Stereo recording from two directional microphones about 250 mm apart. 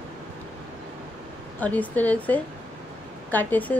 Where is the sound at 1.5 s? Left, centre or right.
Centre.